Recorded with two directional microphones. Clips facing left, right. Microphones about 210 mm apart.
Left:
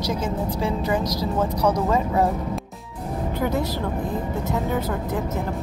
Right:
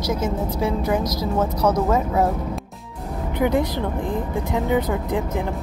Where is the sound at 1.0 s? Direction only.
15° left (ahead or behind).